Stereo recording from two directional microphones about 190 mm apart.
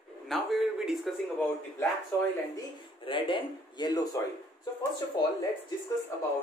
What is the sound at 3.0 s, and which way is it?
A man's voice, 25° left (ahead or behind).